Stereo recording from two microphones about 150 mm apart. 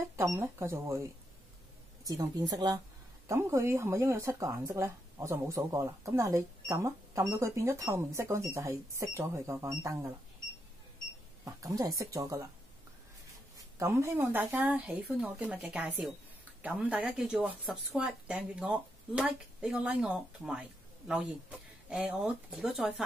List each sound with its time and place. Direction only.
0.1 s speech: 20° right (ahead or behind)
2.0 s speech: 25° right (ahead or behind)
11.4 s speech: 25° right (ahead or behind)
13.7 s speech: 20° right (ahead or behind); by 23.0 s 5° right (ahead or behind)